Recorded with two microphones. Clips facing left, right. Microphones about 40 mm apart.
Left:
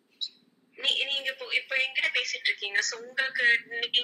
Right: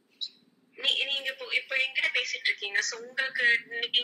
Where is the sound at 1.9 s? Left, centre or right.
Left.